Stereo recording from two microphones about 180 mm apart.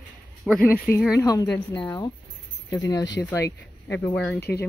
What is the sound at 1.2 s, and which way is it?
Speech, 20° left (ahead or behind).